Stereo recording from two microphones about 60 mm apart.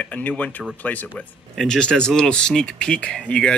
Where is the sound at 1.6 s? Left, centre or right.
Centre.